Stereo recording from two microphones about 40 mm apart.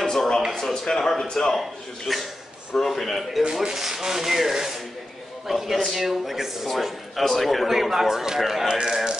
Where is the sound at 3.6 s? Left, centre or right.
Centre.